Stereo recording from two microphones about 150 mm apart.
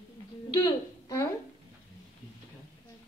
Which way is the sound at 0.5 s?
25° left (ahead or behind).